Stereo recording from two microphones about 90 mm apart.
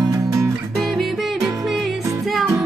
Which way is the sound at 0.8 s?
Centre (ahead or behind).